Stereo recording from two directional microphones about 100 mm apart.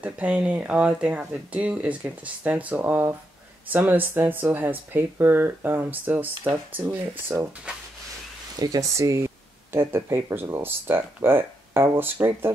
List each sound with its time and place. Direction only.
0.0 s speech: 15° right (ahead or behind)
8.5 s speech: 35° right (ahead or behind)